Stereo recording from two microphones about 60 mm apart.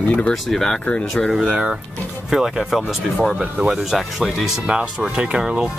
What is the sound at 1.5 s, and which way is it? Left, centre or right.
Speech, centre.